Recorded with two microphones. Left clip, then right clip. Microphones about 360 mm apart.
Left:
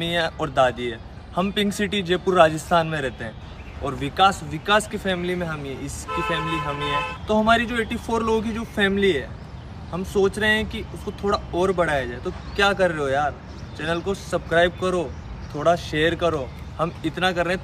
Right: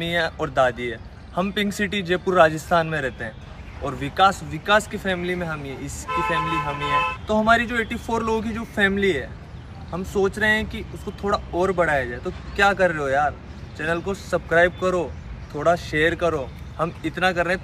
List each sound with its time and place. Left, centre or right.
0.0 s speech: centre
6.0 s speech: centre
6.9 s speech: centre